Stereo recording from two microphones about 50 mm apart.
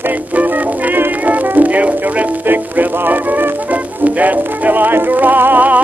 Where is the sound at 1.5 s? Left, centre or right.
Right.